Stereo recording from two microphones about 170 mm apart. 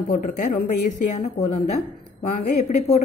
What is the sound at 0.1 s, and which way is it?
Speech, 50° left (ahead or behind).